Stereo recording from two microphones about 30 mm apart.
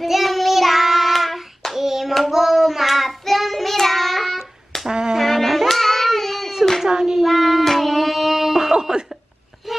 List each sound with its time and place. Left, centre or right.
0.0 s child singing: centre
1.8 s hands: centre
2.3 s child singing: centre
4.8 s brass instrument: right
5.2 s child singing: centre
6.9 s child singing: right
7.2 s child singing: centre
9.7 s a sound: centre